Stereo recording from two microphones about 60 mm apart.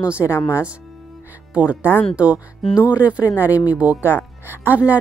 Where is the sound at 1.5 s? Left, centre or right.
Right.